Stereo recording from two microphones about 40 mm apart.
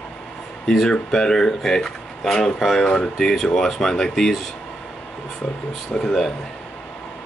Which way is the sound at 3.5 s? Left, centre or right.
Centre.